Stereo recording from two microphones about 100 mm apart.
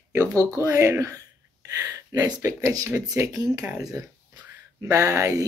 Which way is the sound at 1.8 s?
35° right (ahead or behind).